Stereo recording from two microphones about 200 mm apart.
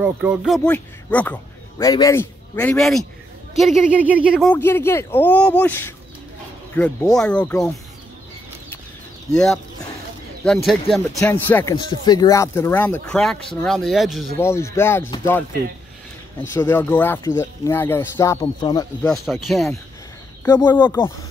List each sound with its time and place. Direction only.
0.0 s speech: 10° right (ahead or behind)
0.7 s speech: 5° left (ahead or behind)
4.5 s speech: 10° left (ahead or behind)
10.4 s speech: centre (ahead or behind)
14.4 s speech: 15° left (ahead or behind)
16.5 s speech: 10° left (ahead or behind)
19.4 s speech: centre (ahead or behind)